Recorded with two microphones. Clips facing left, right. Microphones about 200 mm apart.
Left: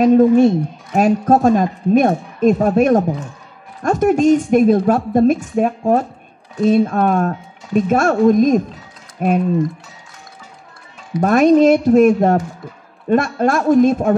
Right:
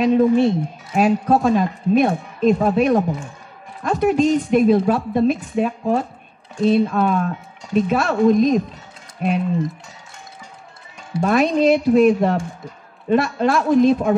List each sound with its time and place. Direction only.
0.0 s speech: 45° left (ahead or behind)
11.2 s speech: 45° left (ahead or behind)